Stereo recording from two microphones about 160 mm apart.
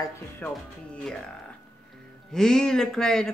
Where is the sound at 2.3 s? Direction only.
5° left (ahead or behind).